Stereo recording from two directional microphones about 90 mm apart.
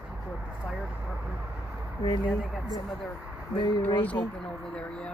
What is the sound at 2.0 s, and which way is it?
Speech, 70° left (ahead or behind).